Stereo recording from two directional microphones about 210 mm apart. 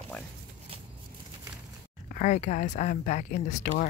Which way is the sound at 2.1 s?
35° left (ahead or behind).